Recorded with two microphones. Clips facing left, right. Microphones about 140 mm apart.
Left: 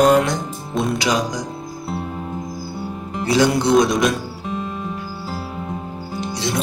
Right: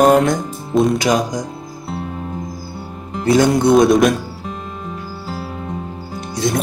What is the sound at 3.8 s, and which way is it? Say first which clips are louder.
Speech: right 5 dB; 55° right (ahead or behind).